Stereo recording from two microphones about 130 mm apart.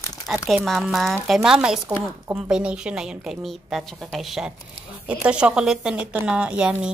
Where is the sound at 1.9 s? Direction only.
20° right (ahead or behind).